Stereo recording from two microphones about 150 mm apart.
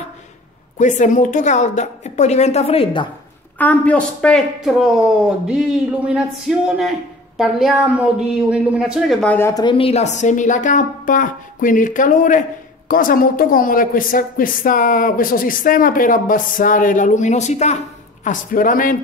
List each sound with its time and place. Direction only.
0.7 s a woman's voice: 55° left (ahead or behind); by 3.1 s 35° left (ahead or behind)
3.5 s speech: 10° left (ahead or behind)
5.5 s a sound: 5° right (ahead or behind); by 9.5 s 10° left (ahead or behind)
9.5 s a woman's voice: 30° left (ahead or behind); by 17.7 s 50° left (ahead or behind)
18.2 s a woman's voice: 65° left (ahead or behind)